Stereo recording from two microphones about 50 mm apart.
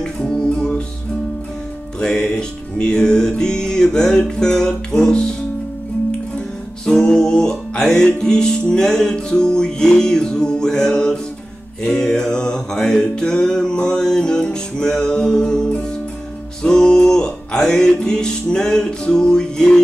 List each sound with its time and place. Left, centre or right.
0.0 s music: centre
2.0 s music: centre
6.9 s music: centre